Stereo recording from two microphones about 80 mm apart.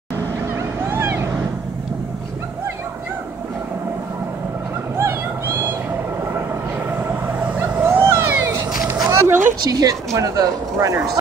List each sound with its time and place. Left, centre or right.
0.6 s vehicle: right
7.1 s vehicle: right
9.7 s speech: right